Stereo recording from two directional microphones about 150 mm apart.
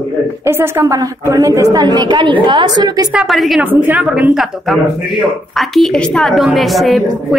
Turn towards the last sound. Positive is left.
turn(degrees=0)  # may be behind; listen again after turning